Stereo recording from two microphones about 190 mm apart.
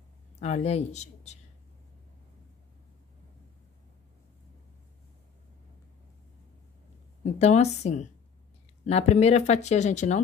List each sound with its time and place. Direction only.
0.4 s speech: 35° left (ahead or behind)
7.2 s speech: 35° left (ahead or behind)